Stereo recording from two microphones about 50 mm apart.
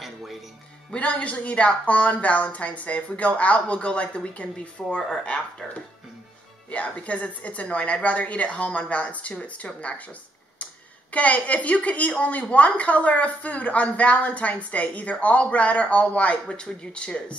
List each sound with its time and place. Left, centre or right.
0.0 s music: centre
0.9 s speech: left
6.7 s speech: left